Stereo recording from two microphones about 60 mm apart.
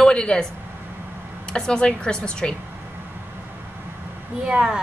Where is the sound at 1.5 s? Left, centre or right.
Centre.